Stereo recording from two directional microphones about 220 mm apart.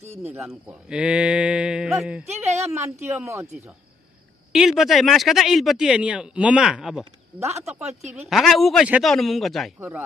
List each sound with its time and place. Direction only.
0.2 s speech: 5° right (ahead or behind)
2.2 s a woman's voice: 30° right (ahead or behind)
3.2 s speech: 10° right (ahead or behind)
4.5 s speech: centre (ahead or behind)
7.4 s speech: 30° right (ahead or behind)
8.3 s speech: centre (ahead or behind)
9.8 s speech: 10° right (ahead or behind)